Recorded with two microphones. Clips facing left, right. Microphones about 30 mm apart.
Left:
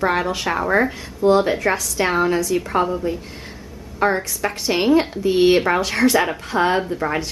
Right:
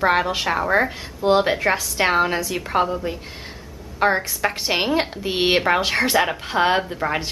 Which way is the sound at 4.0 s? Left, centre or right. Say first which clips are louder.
Even; right.